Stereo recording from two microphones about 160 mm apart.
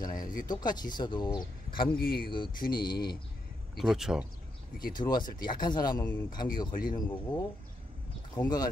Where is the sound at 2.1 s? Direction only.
70° left (ahead or behind).